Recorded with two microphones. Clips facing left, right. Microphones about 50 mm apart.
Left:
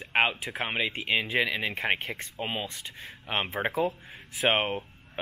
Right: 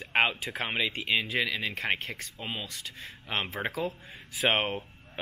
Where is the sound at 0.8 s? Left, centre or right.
Left.